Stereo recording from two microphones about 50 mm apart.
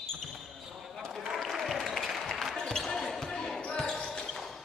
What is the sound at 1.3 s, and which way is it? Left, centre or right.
Applause, centre.